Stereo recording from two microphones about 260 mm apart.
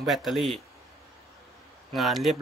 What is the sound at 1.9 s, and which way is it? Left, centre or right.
Speech, centre.